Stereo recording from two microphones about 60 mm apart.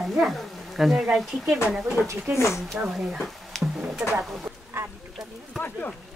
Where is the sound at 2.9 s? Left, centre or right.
Centre.